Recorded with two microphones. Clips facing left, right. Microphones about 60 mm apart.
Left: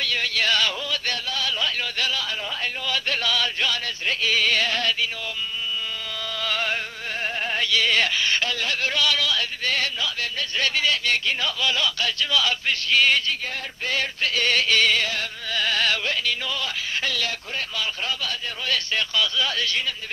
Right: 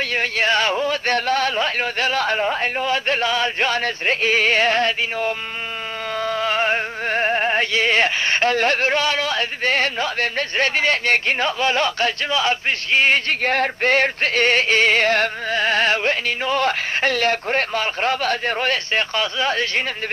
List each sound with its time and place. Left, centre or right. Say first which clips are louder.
0.0 s music: right 4 dB; right
13.3 s music: right 10 dB; right
15.6 s music: right 5 dB; right